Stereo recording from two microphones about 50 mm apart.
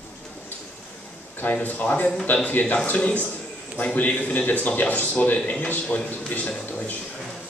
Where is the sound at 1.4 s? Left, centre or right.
Left.